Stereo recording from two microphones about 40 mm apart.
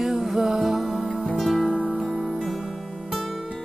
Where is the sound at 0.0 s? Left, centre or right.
Centre.